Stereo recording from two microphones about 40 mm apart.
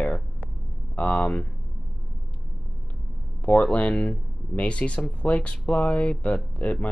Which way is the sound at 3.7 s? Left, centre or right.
Left.